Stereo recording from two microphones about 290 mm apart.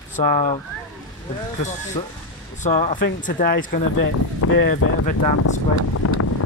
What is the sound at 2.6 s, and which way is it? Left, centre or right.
Speech, left.